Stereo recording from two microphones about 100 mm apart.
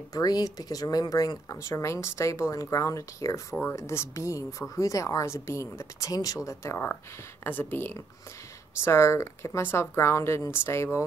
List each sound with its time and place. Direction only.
0.1 s speech: 40° left (ahead or behind)